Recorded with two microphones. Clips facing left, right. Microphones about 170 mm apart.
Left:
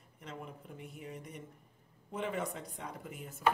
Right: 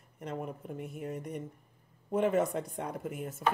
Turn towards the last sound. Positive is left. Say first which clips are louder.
# right 8 dB
turn(degrees=-50)  # may be behind; listen again after turning